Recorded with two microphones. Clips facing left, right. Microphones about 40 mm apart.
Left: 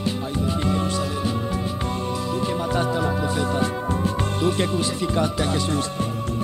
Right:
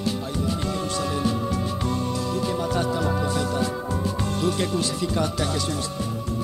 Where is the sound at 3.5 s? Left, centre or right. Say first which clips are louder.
Left 2 dB; left.